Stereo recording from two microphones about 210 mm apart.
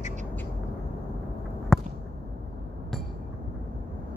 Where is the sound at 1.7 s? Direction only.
Centre (ahead or behind).